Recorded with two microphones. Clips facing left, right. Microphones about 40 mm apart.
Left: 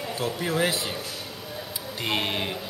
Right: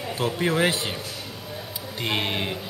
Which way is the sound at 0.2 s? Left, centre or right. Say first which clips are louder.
Right 3 dB; right.